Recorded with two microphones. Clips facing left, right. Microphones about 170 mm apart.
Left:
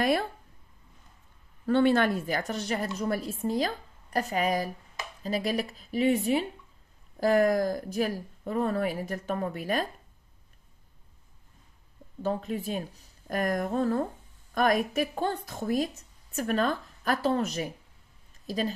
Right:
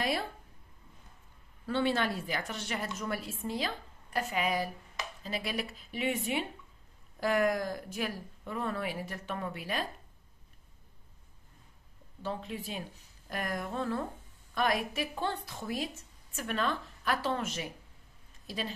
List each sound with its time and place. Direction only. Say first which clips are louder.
1.7 s a woman's voice: left 7 dB; 50° left (ahead or behind)
12.2 s a woman's voice: left 7 dB; 45° left (ahead or behind)